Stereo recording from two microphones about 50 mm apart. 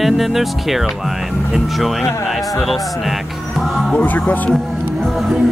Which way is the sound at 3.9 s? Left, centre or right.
Left.